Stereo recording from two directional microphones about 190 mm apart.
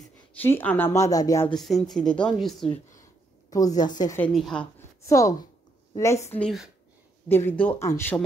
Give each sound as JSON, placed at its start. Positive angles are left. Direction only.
{"t": 0.4, "sound": "speech", "side_deg": 10}
{"t": 1.5, "sound": "a woman's voice", "side_deg": 0}
{"t": 3.4, "sound": "a woman's voice", "side_deg": 20}
{"t": 4.2, "sound": "a woman's voice", "side_deg": 0}
{"t": 5.0, "sound": "speech", "side_deg": 15}
{"t": 6.3, "sound": "a woman's voice", "side_deg": 0}